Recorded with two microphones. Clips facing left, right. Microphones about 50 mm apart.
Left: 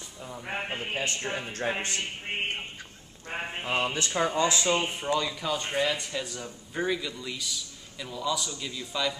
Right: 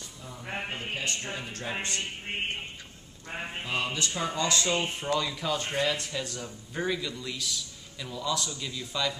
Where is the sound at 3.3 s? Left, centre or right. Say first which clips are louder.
Left 3 dB; left.